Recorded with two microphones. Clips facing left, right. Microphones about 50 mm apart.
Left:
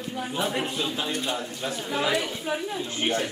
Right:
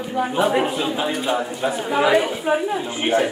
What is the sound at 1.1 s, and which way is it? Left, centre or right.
Speech, centre.